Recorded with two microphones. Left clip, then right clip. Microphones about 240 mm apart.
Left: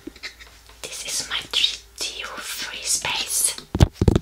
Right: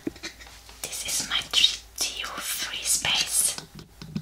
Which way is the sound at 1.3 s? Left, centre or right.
Centre.